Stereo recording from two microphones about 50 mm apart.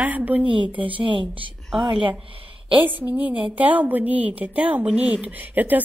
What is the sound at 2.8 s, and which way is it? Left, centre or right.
A woman's voice, right.